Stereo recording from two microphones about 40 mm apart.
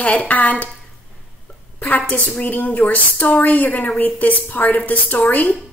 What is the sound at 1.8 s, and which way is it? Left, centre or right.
Speech, left.